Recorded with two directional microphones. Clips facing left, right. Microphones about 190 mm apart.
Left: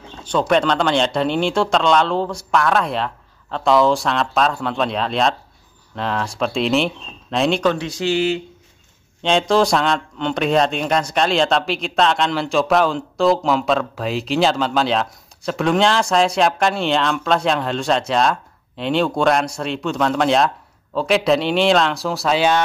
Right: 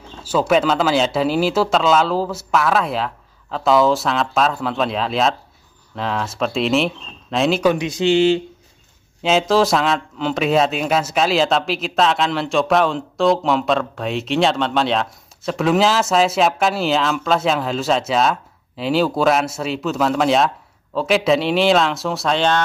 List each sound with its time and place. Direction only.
0.2 s speech: 5° right (ahead or behind)
7.7 s speech: 20° right (ahead or behind)
9.2 s speech: 5° right (ahead or behind)